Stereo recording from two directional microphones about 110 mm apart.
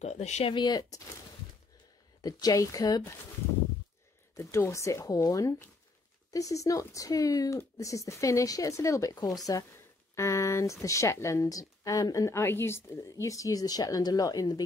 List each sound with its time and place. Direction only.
0.0 s speech: 90° left
0.5 s speech: 40° left (ahead or behind)
2.2 s speech: 35° left (ahead or behind)
4.4 s speech: 25° left (ahead or behind)